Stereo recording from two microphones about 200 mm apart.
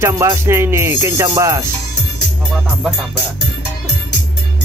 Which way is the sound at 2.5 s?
Centre (ahead or behind).